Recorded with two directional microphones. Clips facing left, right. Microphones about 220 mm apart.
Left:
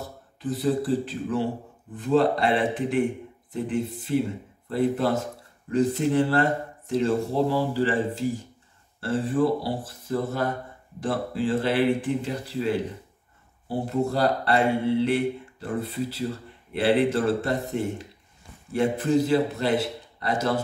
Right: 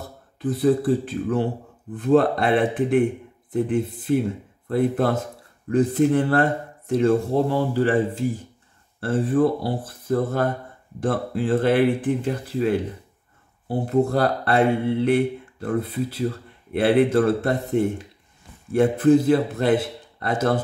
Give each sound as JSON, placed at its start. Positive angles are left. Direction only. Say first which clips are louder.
{"t": 0.4, "sound": "a man's voice", "louder": "right 5 dB", "side_deg": -55}